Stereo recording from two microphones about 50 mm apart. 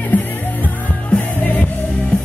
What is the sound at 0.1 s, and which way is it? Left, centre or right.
Music, left.